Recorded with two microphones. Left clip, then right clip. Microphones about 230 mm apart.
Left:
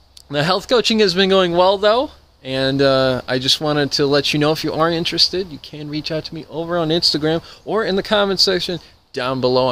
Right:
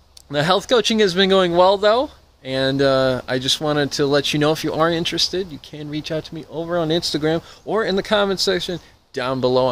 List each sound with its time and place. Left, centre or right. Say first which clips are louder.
0.3 s speech: even; centre